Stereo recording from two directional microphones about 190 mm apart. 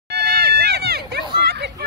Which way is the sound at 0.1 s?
55° right (ahead or behind).